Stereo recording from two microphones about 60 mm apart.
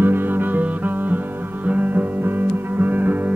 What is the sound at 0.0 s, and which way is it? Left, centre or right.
Music, right.